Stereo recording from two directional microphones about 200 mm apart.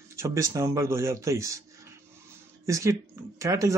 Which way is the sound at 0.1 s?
15° right (ahead or behind).